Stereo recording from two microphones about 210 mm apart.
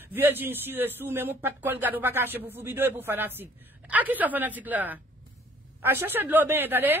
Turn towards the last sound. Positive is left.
turn(degrees=-10)  # may be behind; listen again after turning